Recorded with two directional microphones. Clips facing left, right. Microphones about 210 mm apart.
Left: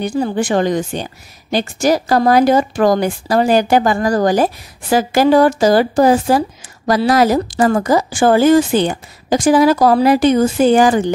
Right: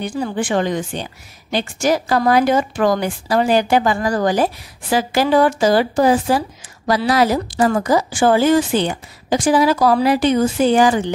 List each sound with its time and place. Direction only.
0.0 s speech: 40° left (ahead or behind)